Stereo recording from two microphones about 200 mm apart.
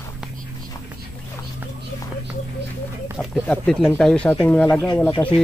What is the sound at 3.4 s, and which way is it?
Speech, 5° left (ahead or behind).